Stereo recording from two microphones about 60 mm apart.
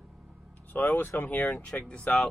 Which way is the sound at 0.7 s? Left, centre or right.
Left.